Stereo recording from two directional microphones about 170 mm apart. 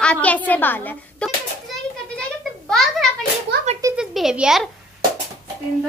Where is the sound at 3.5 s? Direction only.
70° right (ahead or behind).